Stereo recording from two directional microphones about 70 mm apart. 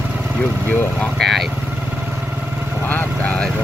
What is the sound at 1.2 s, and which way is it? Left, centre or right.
Speech, centre.